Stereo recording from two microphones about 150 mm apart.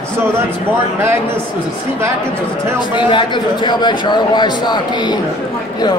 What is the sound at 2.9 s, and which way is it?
A man's voice, 30° left (ahead or behind).